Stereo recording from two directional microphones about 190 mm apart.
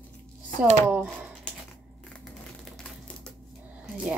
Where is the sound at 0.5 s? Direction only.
40° right (ahead or behind).